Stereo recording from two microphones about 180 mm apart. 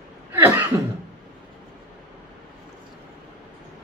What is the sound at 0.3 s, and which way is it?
Cough, 10° right (ahead or behind).